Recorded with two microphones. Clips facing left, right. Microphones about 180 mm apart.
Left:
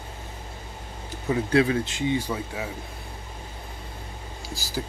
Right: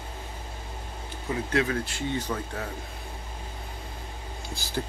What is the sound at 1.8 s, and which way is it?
Speech, 15° left (ahead or behind).